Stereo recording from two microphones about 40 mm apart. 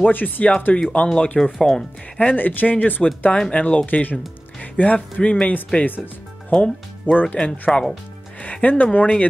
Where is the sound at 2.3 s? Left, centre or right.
Left.